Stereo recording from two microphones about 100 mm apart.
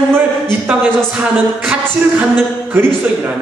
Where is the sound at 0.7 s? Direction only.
15° right (ahead or behind).